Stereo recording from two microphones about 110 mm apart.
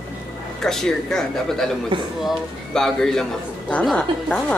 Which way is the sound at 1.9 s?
50° right (ahead or behind).